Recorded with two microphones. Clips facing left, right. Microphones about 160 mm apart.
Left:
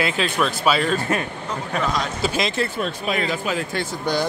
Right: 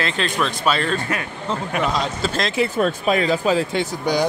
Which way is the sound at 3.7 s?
15° right (ahead or behind).